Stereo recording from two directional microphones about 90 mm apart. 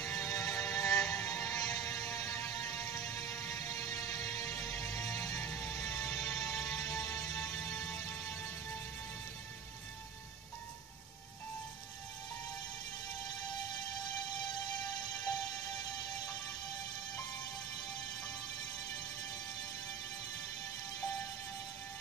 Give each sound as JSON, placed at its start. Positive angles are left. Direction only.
{"t": 0.0, "sound": "music", "side_deg": 35}
{"t": 0.9, "sound": "music", "side_deg": 10}
{"t": 1.3, "sound": "music", "side_deg": 40}